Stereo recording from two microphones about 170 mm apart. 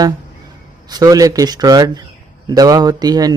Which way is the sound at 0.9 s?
20° right (ahead or behind).